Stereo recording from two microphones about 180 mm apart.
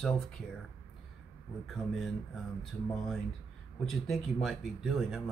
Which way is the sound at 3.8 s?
Centre (ahead or behind).